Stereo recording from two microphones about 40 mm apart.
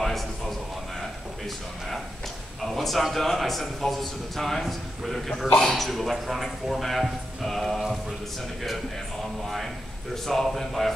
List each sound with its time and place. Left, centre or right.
0.0 s a sound: centre
2.6 s a man's voice: centre
10.1 s a man's voice: centre